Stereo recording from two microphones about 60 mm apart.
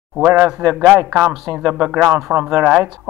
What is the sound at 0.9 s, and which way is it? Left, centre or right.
Speech, right.